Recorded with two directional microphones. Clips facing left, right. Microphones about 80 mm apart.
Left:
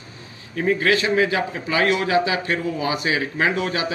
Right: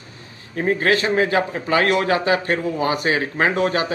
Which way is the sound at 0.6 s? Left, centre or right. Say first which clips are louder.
Right 1 dB; right.